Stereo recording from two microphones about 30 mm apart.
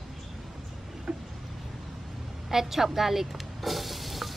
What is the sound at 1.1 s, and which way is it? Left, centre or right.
Vehicle, right.